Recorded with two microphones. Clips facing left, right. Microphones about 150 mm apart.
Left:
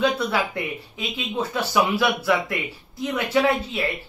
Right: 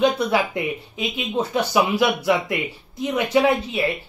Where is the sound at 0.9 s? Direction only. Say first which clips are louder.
Right 3 dB; 20° right (ahead or behind).